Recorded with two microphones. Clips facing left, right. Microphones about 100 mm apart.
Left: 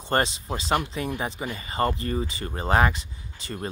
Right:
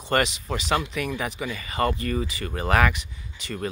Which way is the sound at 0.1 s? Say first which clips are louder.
Right 1 dB; 30° left (ahead or behind).